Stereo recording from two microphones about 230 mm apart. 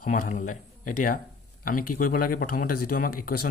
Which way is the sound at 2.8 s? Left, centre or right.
Left.